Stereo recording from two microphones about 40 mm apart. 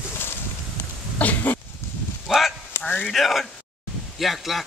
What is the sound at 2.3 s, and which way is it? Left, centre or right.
Livestock, centre.